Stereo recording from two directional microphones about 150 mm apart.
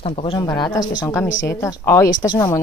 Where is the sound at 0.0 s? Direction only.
40° left (ahead or behind).